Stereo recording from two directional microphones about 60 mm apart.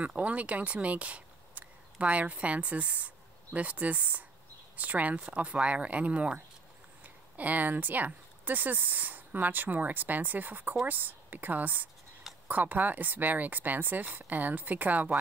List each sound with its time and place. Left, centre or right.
0.0 s speech: right